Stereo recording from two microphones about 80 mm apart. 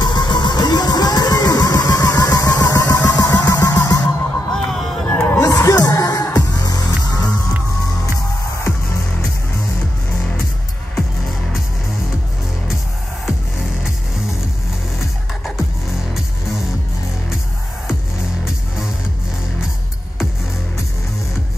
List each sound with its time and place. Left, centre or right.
0.0 s music: left
4.0 s music: centre
5.0 s music: centre
5.4 s music: left
11.0 s music: centre